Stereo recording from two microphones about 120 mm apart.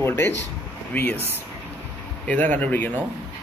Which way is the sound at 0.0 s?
20° left (ahead or behind).